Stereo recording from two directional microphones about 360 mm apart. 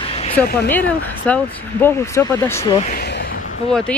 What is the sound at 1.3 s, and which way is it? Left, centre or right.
Speech, centre.